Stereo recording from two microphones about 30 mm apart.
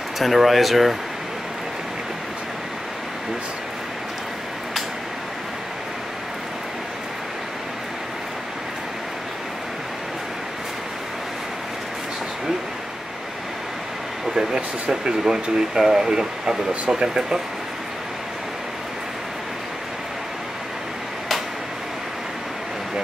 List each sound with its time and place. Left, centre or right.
0.2 s speech: centre
14.3 s speech: centre